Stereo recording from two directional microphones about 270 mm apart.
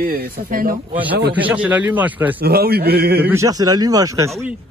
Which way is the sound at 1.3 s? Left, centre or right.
Centre.